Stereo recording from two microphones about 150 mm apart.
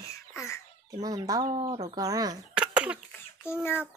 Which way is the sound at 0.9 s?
25° right (ahead or behind).